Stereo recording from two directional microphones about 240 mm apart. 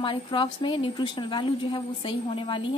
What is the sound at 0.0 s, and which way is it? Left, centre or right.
A woman's voice, left.